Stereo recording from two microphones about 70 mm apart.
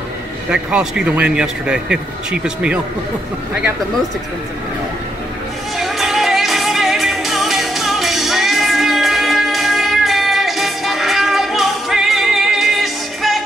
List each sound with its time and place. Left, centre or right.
0.5 s a man's voice: centre
5.8 s music: centre